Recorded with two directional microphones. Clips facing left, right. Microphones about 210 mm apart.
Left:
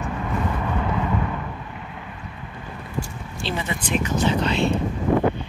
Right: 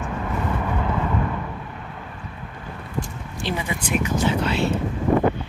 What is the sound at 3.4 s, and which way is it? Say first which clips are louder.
Speech: even; 10° right (ahead or behind).